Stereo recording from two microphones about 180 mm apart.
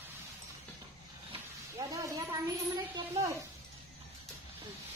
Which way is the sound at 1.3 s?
20° right (ahead or behind).